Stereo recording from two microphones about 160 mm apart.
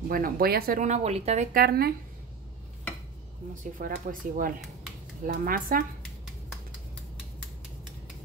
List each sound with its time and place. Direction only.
0.1 s speech: 70° right (ahead or behind); by 1.5 s 45° right (ahead or behind)
1.5 s speech: 70° right (ahead or behind)
3.7 s speech: 60° right (ahead or behind)